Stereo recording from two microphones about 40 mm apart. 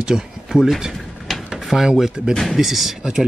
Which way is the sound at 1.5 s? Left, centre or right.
Centre.